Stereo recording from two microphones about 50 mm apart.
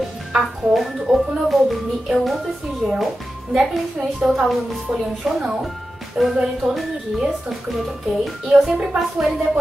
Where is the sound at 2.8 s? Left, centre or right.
Centre.